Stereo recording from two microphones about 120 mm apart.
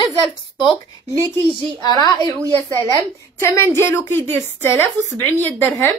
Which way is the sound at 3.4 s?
20° left (ahead or behind).